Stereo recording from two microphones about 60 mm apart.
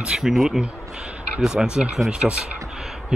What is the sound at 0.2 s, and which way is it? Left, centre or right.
Speech, centre.